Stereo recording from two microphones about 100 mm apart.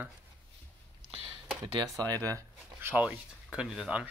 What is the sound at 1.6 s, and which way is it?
Speech, 35° right (ahead or behind).